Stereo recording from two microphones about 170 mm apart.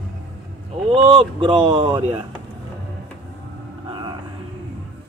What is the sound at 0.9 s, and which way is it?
Speech, 30° right (ahead or behind).